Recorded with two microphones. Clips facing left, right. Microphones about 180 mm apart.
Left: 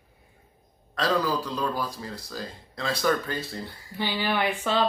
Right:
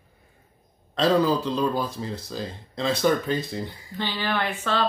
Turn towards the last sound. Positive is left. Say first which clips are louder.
# left 1 dB
turn(degrees=15)  # may be behind; listen again after turning